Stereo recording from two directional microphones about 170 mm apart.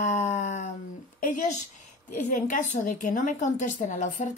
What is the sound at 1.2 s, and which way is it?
A woman's voice, 50° left (ahead or behind).